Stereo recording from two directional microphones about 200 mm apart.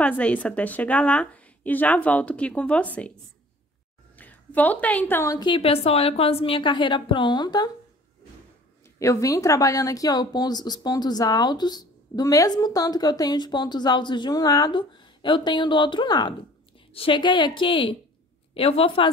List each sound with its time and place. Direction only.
0.0 s speech: 5° left (ahead or behind)
4.2 s speech: 10° left (ahead or behind)
9.0 s speech: 15° left (ahead or behind)